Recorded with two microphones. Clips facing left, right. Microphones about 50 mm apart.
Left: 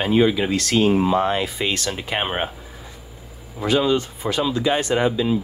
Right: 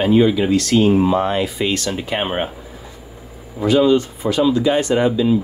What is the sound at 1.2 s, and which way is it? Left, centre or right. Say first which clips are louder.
Speech: right 3 dB; left.